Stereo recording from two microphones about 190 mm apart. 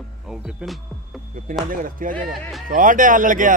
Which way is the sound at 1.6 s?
45° right (ahead or behind).